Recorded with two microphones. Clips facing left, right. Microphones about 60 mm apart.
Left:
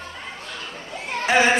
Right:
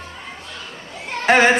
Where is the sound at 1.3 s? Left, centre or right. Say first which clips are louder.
Right 4 dB; right.